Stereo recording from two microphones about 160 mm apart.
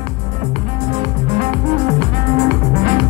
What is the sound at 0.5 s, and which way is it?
Music, 45° right (ahead or behind).